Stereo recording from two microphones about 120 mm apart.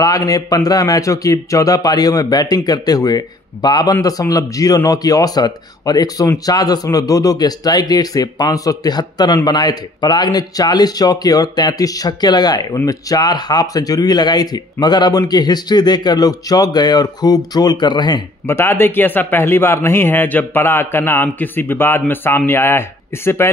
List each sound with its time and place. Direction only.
0.2 s speech: 30° left (ahead or behind)
18.5 s speech: 20° left (ahead or behind)